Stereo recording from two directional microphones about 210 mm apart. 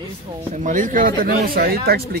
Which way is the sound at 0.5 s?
35° right (ahead or behind).